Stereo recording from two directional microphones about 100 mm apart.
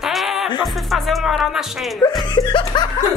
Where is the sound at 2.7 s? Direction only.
50° left (ahead or behind).